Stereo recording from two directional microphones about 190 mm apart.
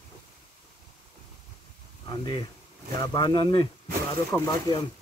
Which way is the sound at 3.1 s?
20° left (ahead or behind).